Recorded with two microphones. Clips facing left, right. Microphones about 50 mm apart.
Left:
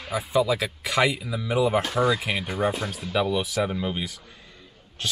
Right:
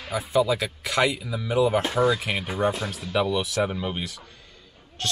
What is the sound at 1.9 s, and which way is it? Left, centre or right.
Speech, centre.